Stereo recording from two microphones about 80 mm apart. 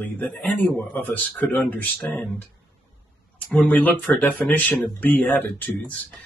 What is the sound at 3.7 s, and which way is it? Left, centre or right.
Speech, left.